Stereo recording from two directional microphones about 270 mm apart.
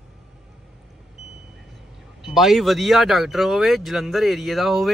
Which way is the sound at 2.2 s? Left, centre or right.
Centre.